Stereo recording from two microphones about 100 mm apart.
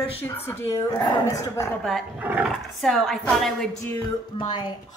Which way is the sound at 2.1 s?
20° right (ahead or behind).